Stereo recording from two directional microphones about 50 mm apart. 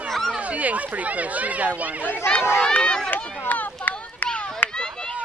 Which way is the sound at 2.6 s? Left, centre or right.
Centre.